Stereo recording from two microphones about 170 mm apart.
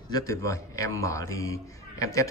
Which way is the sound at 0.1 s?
20° left (ahead or behind).